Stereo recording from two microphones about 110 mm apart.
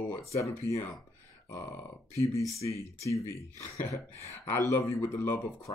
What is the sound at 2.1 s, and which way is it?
A man's voice, 25° left (ahead or behind).